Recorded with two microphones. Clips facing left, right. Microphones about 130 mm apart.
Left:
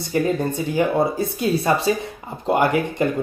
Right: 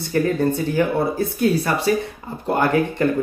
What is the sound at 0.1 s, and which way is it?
Speech, 15° left (ahead or behind).